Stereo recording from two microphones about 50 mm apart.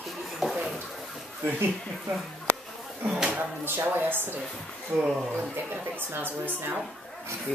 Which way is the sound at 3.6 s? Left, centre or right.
Right.